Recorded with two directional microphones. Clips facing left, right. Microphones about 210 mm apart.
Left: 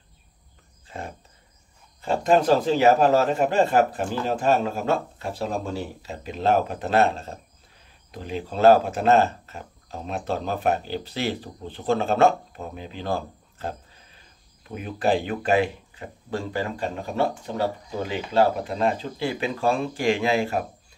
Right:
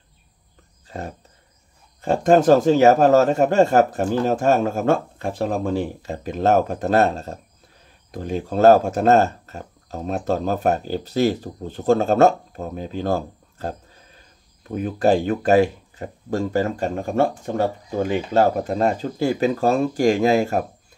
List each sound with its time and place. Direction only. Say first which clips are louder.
0.8 s speech: right 4 dB; 40° right (ahead or behind)